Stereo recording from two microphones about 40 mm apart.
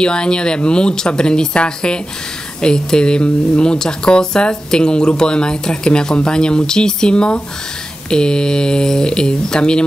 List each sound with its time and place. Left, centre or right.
0.0 s speech: left